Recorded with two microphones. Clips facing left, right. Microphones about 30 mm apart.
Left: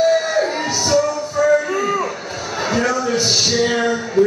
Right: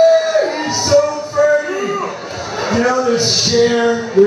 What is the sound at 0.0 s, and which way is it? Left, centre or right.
Music, centre.